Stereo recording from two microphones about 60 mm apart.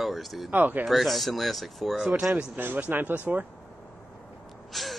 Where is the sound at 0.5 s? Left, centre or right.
Right.